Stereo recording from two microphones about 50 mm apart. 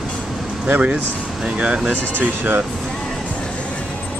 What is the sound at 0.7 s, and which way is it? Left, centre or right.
Speech, right.